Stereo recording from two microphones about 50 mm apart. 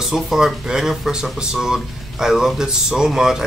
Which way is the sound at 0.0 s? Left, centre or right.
Centre.